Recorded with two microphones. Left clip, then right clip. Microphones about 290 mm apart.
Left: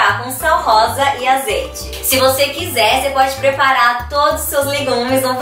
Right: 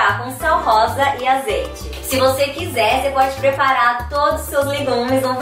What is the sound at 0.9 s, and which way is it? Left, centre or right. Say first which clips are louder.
A woman's voice: left 2 dB; centre.